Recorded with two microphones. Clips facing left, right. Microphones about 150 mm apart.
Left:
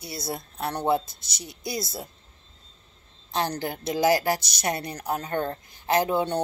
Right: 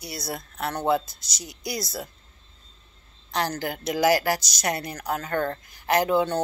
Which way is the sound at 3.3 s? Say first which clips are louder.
Even; 25° left (ahead or behind).